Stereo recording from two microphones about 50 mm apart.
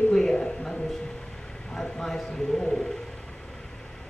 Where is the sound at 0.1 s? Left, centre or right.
Centre.